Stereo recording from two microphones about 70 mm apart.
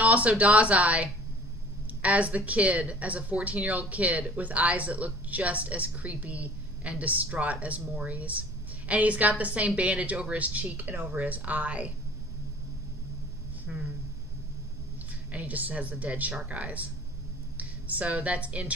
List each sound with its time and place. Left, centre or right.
0.0 s speech: right
13.7 s speech: centre
15.3 s speech: right